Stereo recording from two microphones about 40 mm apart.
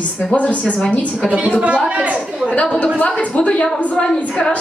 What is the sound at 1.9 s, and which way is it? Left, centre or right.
Speech, right.